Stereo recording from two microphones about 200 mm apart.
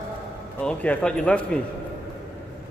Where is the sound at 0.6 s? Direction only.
5° left (ahead or behind).